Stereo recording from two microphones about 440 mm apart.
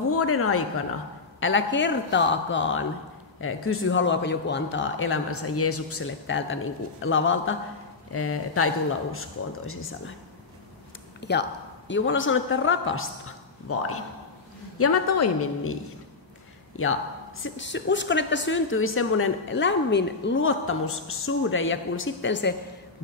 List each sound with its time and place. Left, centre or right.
0.1 s a woman's voice: left
11.1 s a woman's voice: left